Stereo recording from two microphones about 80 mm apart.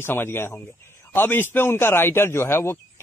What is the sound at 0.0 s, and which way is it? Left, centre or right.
Speech, left.